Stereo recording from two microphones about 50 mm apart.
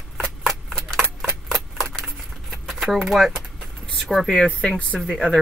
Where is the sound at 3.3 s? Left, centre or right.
Centre.